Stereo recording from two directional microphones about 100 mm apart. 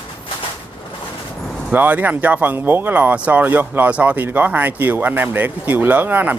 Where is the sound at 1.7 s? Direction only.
15° right (ahead or behind).